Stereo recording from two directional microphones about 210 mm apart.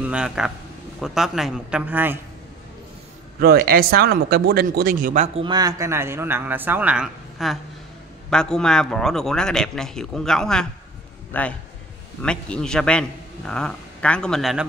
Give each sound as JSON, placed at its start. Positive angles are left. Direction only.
{"t": 0.0, "sound": "a man's voice", "side_deg": -5}
{"t": 3.3, "sound": "a man's voice", "side_deg": -45}